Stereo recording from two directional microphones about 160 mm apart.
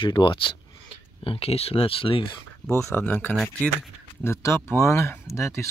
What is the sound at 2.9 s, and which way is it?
Speech, 10° left (ahead or behind).